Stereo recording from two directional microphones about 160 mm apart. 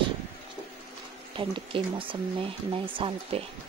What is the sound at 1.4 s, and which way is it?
Speech, 35° right (ahead or behind).